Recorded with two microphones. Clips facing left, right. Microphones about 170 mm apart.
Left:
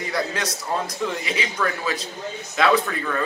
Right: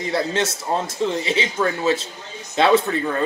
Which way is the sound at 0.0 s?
25° right (ahead or behind).